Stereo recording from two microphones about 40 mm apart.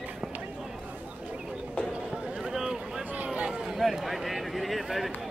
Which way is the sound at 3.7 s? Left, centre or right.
Centre.